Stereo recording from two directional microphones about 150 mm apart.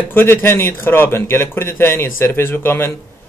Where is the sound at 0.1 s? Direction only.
15° left (ahead or behind).